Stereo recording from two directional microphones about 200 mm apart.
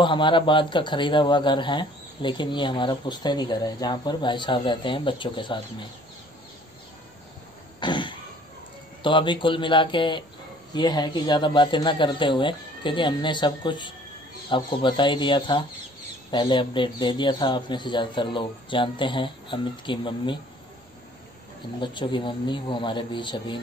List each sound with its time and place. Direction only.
0.0 s speech: 25° left (ahead or behind)
7.8 s cough: 25° left (ahead or behind)
9.0 s speech: 25° left (ahead or behind)
21.7 s speech: 25° left (ahead or behind)